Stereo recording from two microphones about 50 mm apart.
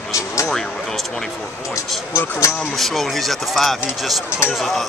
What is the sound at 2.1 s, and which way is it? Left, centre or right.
Speech, left.